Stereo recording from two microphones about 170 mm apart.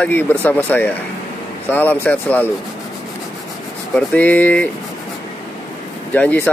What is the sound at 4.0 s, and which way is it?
Speech, 10° left (ahead or behind).